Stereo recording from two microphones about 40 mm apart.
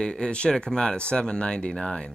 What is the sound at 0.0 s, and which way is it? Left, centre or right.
Speech, left.